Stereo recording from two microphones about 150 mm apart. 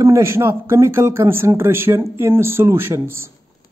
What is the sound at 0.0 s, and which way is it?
Speech, 20° right (ahead or behind).